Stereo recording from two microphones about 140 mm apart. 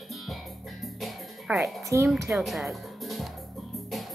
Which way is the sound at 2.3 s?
Centre (ahead or behind).